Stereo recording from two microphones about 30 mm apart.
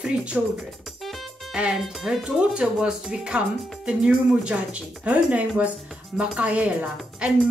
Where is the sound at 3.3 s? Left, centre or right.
Right.